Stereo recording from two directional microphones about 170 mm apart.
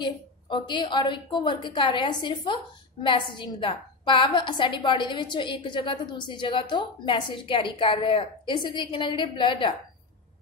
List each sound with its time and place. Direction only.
0.0 s a woman's voice: 25° left (ahead or behind)